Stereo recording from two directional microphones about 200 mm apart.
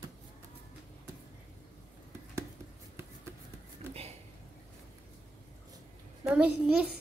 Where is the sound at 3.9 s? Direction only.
30° right (ahead or behind).